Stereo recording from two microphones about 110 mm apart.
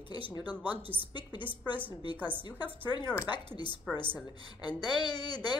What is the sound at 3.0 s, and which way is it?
Speech, 15° right (ahead or behind).